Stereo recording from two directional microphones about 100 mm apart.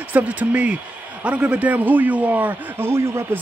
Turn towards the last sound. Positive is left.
turn(degrees=-25)  # may be behind; listen again after turning